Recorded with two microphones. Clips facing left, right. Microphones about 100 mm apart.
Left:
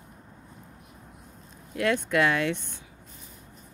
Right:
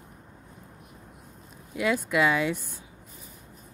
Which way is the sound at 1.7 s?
5° right (ahead or behind).